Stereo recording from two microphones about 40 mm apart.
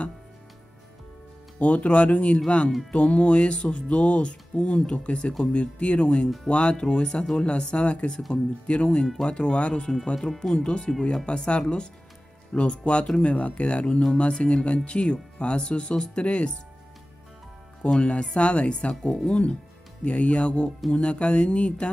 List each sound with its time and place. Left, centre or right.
1.6 s speech: left
2.4 s music: left
9.0 s music: centre
10.5 s speech: left
11.2 s music: left
13.2 s speech: left
14.4 s music: left
17.8 s speech: left
18.2 s music: left